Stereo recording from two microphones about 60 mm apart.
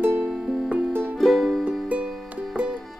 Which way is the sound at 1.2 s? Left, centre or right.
Centre.